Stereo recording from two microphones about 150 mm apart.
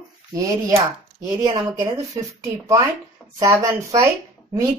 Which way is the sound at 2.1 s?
20° right (ahead or behind).